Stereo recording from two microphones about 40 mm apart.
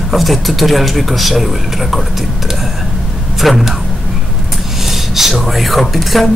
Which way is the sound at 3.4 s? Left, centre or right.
Centre.